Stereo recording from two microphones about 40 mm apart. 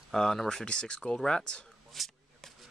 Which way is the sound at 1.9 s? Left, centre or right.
Centre.